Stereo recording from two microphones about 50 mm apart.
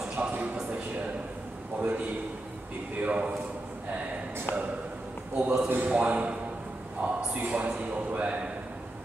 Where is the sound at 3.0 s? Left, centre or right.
Right.